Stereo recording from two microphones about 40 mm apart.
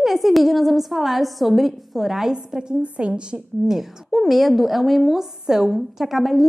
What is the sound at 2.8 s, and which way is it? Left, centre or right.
Speech, right.